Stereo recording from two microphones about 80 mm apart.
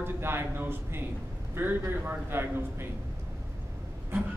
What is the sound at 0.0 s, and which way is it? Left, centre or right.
A man's voice, right.